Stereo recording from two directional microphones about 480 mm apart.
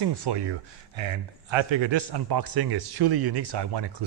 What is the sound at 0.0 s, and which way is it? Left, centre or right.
Speech, right.